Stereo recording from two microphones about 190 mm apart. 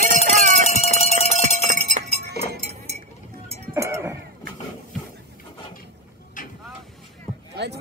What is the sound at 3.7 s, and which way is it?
Cowbell, 15° right (ahead or behind).